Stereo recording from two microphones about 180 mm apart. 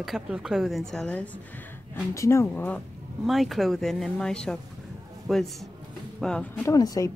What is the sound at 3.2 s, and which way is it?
Speech, centre (ahead or behind).